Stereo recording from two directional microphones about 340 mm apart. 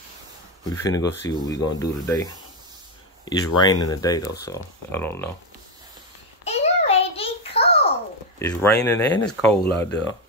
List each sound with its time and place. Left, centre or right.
0.7 s speech: centre
3.5 s speech: centre
6.4 s a sound: centre
8.4 s speech: centre